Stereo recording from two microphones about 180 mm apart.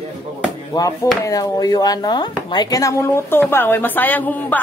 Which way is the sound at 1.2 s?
20° left (ahead or behind).